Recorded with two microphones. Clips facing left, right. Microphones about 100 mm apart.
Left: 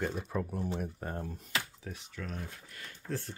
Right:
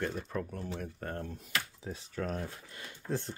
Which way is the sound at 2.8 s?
20° right (ahead or behind).